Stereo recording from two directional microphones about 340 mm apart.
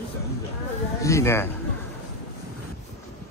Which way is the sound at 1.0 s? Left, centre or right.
Centre.